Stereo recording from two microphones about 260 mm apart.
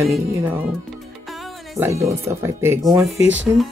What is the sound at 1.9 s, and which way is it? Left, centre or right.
Speech, centre.